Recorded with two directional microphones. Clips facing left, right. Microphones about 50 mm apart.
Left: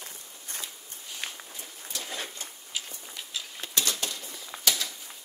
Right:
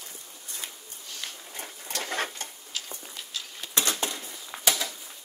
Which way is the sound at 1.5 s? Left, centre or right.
Right.